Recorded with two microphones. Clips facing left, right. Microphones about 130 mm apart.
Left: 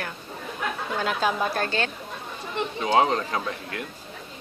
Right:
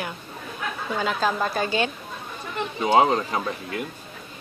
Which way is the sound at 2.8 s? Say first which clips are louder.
Right 3 dB; 10° right (ahead or behind).